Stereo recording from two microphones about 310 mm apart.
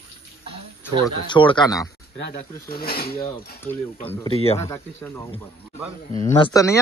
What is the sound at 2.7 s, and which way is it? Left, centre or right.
Speech, left.